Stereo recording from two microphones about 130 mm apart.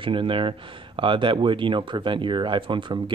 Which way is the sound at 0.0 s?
40° right (ahead or behind).